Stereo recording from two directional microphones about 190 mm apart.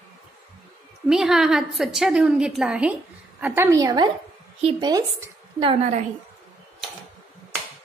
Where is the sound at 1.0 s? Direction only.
5° right (ahead or behind).